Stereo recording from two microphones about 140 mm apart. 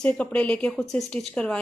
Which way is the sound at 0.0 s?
10° left (ahead or behind).